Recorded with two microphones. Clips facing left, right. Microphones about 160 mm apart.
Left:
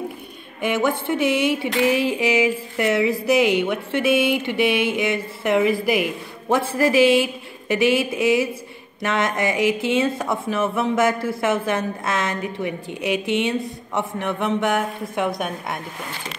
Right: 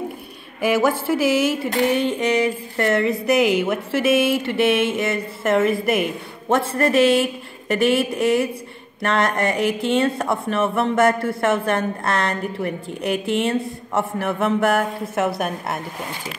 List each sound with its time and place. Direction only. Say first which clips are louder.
0.6 s speech: right 3 dB; 5° right (ahead or behind)
1.7 s a sound: left 1 dB; 40° right (ahead or behind)
2.0 s speech: even; 5° left (ahead or behind)